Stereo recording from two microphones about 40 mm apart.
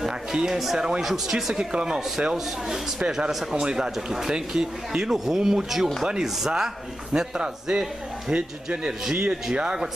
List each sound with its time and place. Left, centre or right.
0.0 s a man's voice: centre